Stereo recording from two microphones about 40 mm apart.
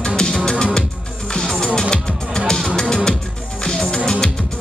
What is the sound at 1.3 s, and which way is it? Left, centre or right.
Music, centre.